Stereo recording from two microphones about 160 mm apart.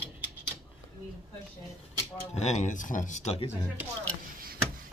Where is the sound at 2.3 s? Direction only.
45° left (ahead or behind).